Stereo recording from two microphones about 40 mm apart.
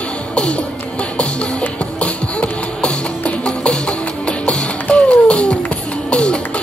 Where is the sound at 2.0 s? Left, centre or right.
Left.